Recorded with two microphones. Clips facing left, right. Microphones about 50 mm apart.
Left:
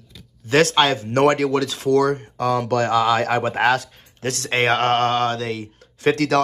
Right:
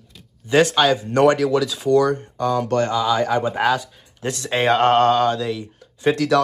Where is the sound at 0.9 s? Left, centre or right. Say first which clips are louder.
Right 1 dB; left.